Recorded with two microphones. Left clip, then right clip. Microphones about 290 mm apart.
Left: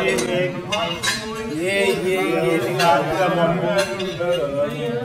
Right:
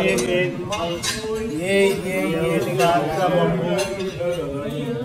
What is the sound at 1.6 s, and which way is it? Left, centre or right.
Speech, right.